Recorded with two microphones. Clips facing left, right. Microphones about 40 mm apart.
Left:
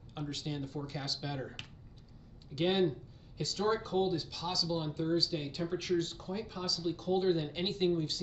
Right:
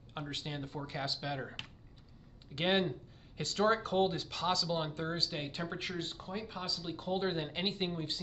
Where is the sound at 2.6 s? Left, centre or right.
Right.